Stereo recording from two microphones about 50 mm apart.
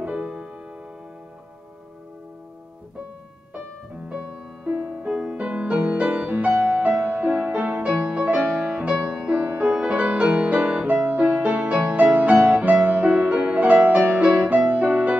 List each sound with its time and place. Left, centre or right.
0.0 s music: right
4.1 s music: centre
5.3 s music: right
6.3 s music: right
7.9 s music: right
11.4 s music: right
11.7 s music: right